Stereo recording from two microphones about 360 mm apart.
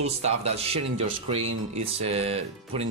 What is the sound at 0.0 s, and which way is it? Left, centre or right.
Speech, centre.